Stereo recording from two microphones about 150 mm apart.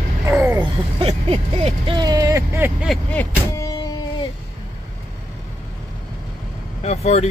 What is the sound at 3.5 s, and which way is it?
Music, 25° left (ahead or behind).